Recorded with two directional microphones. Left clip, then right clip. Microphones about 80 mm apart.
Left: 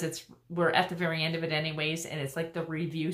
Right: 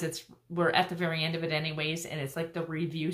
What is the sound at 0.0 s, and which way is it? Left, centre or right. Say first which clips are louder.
Speech: even; centre.